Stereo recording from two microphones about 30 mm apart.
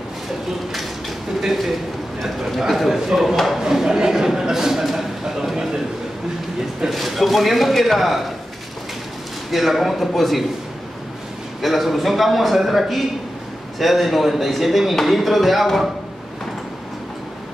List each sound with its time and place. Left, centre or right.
1.4 s a man's voice: centre
3.6 s speech: centre
6.9 s speech: centre
9.5 s a man's voice: centre
11.6 s a man's voice: centre